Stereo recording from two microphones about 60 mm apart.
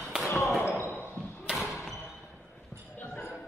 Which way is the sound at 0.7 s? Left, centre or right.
Left.